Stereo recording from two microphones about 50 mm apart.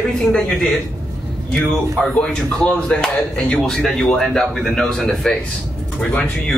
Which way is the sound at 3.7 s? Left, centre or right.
Centre.